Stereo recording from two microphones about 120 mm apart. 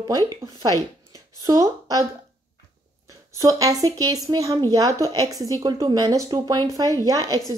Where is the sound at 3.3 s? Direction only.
30° right (ahead or behind).